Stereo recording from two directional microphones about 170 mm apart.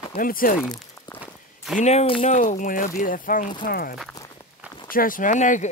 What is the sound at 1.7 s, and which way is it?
Speech, 40° left (ahead or behind).